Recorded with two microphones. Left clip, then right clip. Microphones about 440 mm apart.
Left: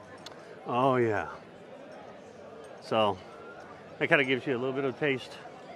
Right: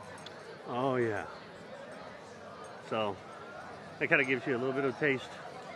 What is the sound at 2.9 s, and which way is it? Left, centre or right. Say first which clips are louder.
Speech: left 7 dB; left.